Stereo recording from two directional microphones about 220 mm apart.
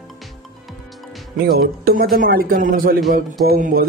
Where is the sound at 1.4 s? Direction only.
45° right (ahead or behind).